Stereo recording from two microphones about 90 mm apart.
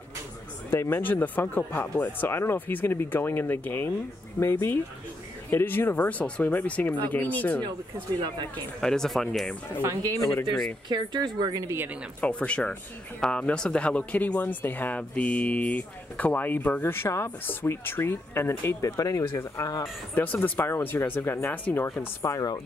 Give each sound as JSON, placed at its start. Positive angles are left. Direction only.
{"t": 0.7, "sound": "speech", "side_deg": 25}
{"t": 8.8, "sound": "speech", "side_deg": 5}
{"t": 10.9, "sound": "a woman's voice", "side_deg": -55}
{"t": 11.7, "sound": "speech", "side_deg": -25}
{"t": 12.2, "sound": "speech", "side_deg": 15}
{"t": 18.8, "sound": "speech", "side_deg": 40}
{"t": 20.2, "sound": "speech", "side_deg": 20}
{"t": 22.3, "sound": "speech", "side_deg": 45}